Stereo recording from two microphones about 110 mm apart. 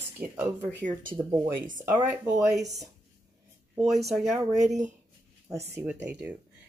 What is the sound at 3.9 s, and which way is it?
Speech, centre (ahead or behind).